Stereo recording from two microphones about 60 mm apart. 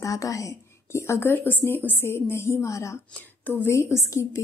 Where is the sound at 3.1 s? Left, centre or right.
Left.